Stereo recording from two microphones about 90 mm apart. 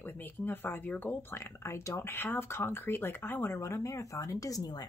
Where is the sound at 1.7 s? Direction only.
30° left (ahead or behind).